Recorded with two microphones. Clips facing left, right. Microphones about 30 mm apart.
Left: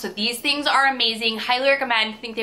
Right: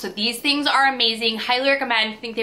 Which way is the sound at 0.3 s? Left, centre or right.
Centre.